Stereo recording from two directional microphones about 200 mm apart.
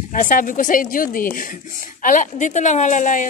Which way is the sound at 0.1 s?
40° left (ahead or behind).